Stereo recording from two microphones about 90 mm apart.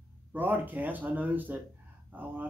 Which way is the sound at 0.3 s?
20° right (ahead or behind).